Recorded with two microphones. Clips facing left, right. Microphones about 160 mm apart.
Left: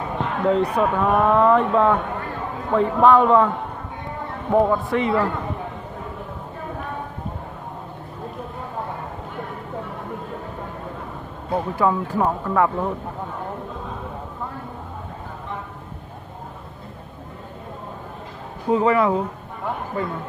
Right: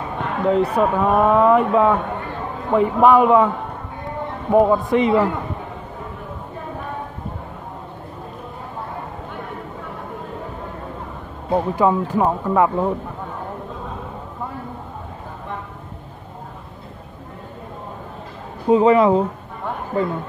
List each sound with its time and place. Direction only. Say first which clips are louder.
0.5 s speech: right 2 dB; 5° right (ahead or behind)
4.5 s speech: right 3 dB; 15° right (ahead or behind)
11.5 s speech: right 3 dB; 20° right (ahead or behind)
18.7 s speech: right 5 dB; 20° right (ahead or behind)